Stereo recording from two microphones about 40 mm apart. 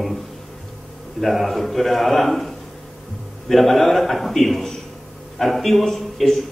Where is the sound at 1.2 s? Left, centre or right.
Centre.